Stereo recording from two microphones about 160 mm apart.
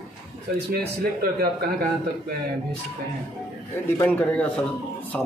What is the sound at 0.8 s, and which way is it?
Speech, 75° right (ahead or behind).